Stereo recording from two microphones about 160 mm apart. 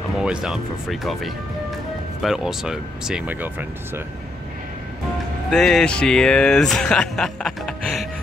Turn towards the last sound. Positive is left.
turn(degrees=5)  # may be behind; listen again after turning